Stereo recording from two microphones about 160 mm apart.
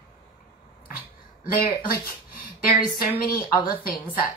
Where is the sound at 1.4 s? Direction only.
65° left (ahead or behind).